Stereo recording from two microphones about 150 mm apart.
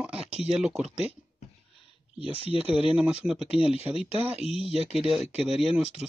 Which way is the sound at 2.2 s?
40° right (ahead or behind).